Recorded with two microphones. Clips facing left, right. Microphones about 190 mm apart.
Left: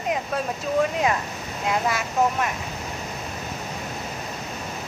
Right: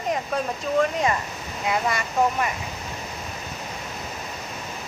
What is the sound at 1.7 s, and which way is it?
Speech, centre (ahead or behind).